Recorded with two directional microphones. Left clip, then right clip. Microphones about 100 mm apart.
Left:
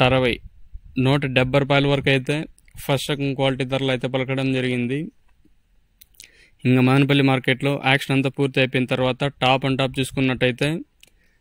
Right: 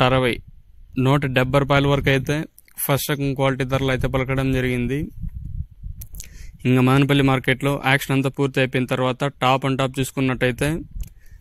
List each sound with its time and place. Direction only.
0.0 s speech: 40° left (ahead or behind)
6.6 s speech: 40° left (ahead or behind)